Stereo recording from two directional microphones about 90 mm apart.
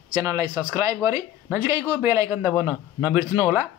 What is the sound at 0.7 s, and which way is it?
Speech, 35° right (ahead or behind).